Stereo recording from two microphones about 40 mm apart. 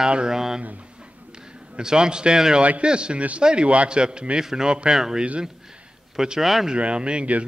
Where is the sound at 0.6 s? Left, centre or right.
Right.